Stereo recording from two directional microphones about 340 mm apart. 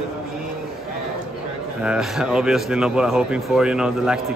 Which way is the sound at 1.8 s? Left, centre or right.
Centre.